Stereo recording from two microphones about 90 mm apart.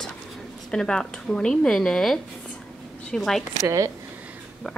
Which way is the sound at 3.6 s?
40° right (ahead or behind).